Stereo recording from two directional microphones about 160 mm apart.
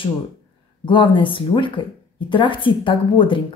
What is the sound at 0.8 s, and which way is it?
A woman's voice, 30° left (ahead or behind).